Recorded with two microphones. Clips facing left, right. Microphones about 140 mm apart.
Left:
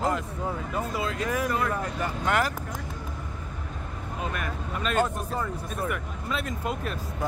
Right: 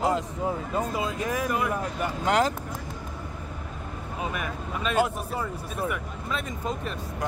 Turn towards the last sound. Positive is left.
turn(degrees=0)  # may be behind; listen again after turning